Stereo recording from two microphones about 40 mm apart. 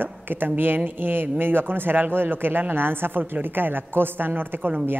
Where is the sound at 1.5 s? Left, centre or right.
Right.